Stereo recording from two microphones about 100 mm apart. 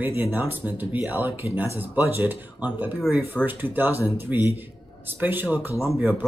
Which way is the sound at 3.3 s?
20° right (ahead or behind).